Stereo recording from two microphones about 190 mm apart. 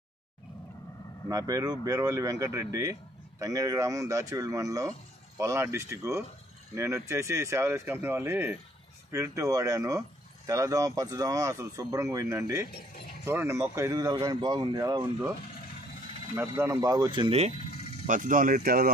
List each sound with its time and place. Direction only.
1.3 s speech: 20° right (ahead or behind)
16.3 s speech: 15° right (ahead or behind); by 17.5 s 30° right (ahead or behind)
18.0 s speech: 45° right (ahead or behind)